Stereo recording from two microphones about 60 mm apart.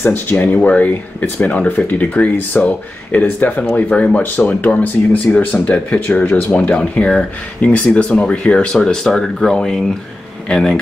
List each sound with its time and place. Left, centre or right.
0.0 s speech: left
3.3 s speech: left; by 10.8 s centre